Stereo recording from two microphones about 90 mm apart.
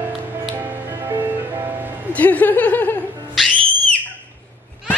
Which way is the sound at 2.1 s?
20° left (ahead or behind).